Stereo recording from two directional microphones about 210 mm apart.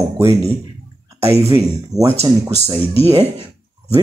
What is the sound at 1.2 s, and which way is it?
Speech, 10° right (ahead or behind).